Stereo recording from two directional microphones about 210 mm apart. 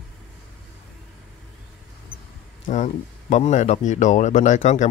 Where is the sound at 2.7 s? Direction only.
35° left (ahead or behind).